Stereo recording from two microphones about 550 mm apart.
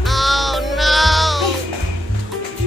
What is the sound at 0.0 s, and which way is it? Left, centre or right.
Music, centre.